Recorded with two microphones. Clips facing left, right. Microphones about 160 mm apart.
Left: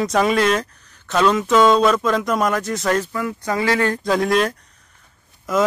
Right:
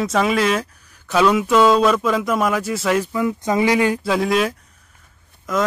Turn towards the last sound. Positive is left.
turn(degrees=0)  # may be behind; listen again after turning